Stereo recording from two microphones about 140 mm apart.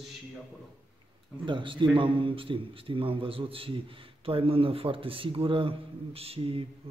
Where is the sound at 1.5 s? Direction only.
35° right (ahead or behind).